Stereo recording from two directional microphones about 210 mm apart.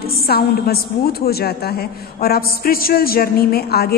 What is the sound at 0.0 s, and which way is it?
A woman's voice, 45° left (ahead or behind).